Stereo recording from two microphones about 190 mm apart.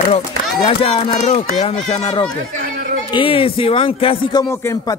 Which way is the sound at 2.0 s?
20° left (ahead or behind).